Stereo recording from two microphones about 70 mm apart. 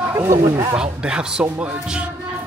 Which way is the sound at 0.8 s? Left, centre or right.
Centre.